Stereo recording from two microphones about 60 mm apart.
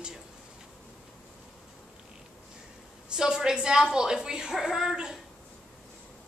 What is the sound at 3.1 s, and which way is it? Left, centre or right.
A woman's voice, centre.